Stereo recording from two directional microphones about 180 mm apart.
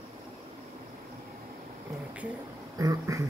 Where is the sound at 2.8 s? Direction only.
20° right (ahead or behind).